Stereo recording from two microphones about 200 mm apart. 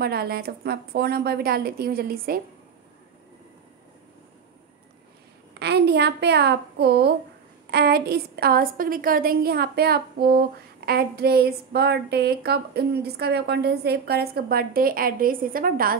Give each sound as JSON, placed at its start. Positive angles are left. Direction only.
{"t": 0.0, "sound": "a woman's voice", "side_deg": -50}
{"t": 5.6, "sound": "a woman's voice", "side_deg": -55}